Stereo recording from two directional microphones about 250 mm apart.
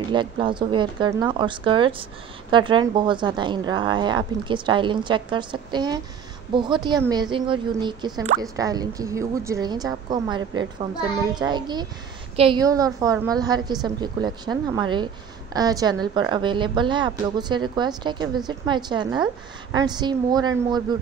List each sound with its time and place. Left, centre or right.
0.1 s speech: centre